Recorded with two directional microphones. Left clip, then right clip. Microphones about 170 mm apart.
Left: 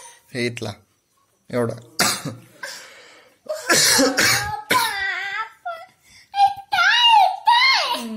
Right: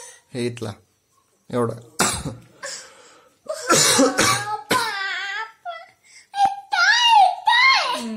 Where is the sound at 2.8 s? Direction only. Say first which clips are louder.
Left 3 dB; 10° right (ahead or behind).